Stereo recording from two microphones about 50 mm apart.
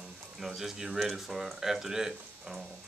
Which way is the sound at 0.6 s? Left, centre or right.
Centre.